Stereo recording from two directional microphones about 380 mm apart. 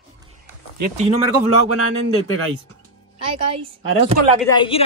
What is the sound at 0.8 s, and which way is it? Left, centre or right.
Speech, centre.